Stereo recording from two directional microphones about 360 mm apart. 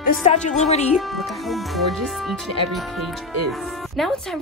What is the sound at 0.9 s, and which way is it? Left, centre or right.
Speech, centre.